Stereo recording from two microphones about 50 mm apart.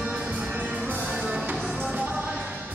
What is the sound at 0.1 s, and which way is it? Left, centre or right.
Music, right.